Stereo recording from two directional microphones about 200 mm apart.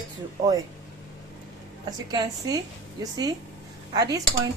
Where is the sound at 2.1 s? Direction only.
20° right (ahead or behind).